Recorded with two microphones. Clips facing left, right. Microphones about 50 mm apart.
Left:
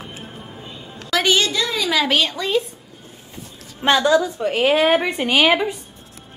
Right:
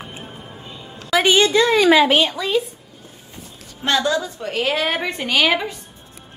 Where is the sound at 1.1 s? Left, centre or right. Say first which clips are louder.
Right 3 dB; centre.